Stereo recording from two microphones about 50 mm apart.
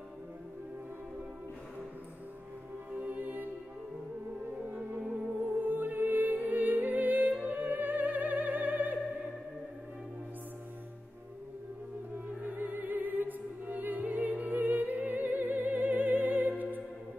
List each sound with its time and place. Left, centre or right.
2.9 s music: right
4.6 s music: right
12.4 s opera: right